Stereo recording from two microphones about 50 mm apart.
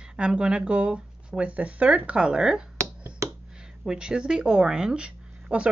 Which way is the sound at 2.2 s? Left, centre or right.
Centre.